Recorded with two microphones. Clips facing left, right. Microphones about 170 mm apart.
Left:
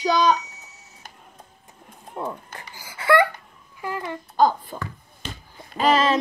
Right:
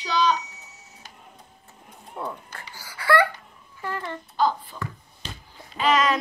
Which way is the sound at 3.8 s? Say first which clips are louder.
Left 2 dB; 10° left (ahead or behind).